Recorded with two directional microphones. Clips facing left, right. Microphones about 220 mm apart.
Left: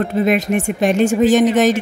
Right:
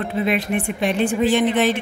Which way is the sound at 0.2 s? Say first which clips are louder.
Left 4 dB; 45° left (ahead or behind).